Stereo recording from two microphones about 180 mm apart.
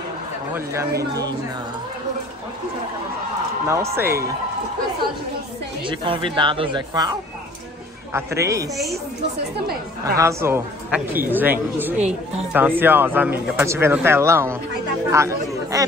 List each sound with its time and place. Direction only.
0.7 s speech: 20° right (ahead or behind)
3.6 s speech: 15° right (ahead or behind)
5.9 s speech: 30° right (ahead or behind)
10.1 s speech: 15° right (ahead or behind)